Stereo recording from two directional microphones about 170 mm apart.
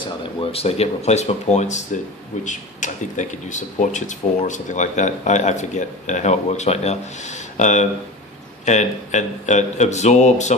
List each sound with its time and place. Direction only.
0.0 s speech: 35° left (ahead or behind)